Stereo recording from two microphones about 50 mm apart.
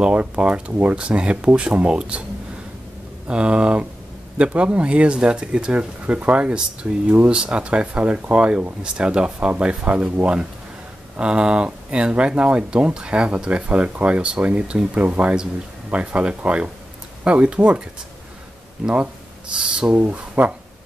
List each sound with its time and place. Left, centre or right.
0.0 s speech: right
3.3 s speech: right
11.1 s speech: centre
15.0 s speech: right
19.5 s speech: right
20.0 s speech: right